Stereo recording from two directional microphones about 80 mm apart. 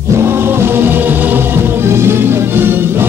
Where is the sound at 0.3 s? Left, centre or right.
Right.